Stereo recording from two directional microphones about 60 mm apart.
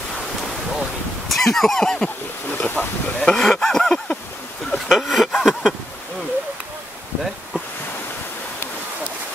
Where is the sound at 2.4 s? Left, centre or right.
Left.